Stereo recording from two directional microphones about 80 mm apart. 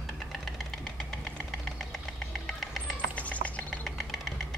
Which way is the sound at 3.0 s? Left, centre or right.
Centre.